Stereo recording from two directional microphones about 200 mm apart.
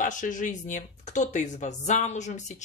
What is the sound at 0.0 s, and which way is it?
Speech, 40° left (ahead or behind).